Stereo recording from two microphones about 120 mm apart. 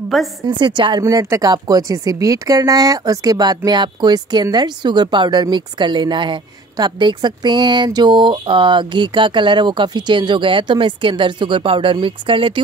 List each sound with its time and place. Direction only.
0.4 s speech: 40° right (ahead or behind)